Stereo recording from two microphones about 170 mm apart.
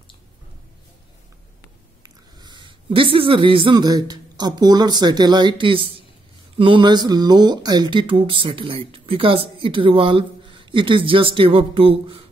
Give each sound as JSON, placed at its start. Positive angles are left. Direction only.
{"t": 2.0, "sound": "speech", "side_deg": -25}